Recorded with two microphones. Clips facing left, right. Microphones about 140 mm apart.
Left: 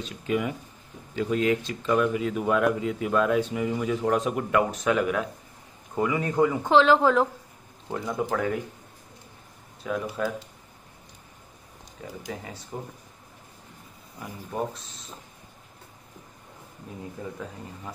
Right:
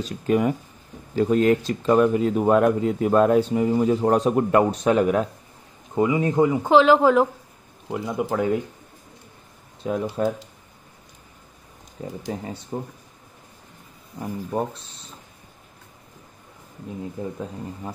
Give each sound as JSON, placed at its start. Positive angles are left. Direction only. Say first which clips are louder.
{"t": 0.0, "sound": "speech", "louder": "right 6 dB", "side_deg": -40}
{"t": 5.9, "sound": "speech", "louder": "right 4 dB", "side_deg": -20}
{"t": 6.6, "sound": "speech", "louder": "right 4 dB", "side_deg": -5}
{"t": 9.8, "sound": "speech", "louder": "right 5 dB", "side_deg": -30}
{"t": 12.0, "sound": "speech", "louder": "right 6 dB", "side_deg": -30}
{"t": 14.2, "sound": "speech", "louder": "right 5 dB", "side_deg": -30}
{"t": 17.2, "sound": "speech", "louder": "right 5 dB", "side_deg": -25}